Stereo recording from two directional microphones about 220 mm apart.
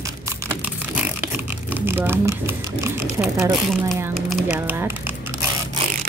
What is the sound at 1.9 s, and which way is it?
Speech, 10° right (ahead or behind).